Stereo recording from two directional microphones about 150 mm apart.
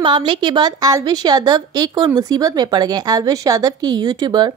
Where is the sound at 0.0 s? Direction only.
30° right (ahead or behind).